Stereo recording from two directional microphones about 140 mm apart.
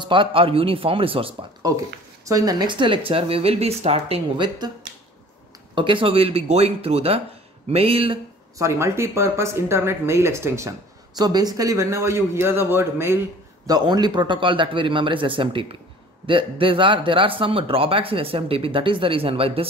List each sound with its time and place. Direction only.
0.0 s speech: 35° right (ahead or behind)
1.6 s speech: 25° right (ahead or behind); by 4.5 s 45° right (ahead or behind)
5.8 s speech: 40° right (ahead or behind)
8.5 s a man's voice: 20° right (ahead or behind); by 19.7 s 40° right (ahead or behind)